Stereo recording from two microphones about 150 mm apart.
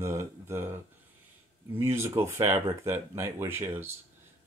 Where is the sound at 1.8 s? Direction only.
15° right (ahead or behind).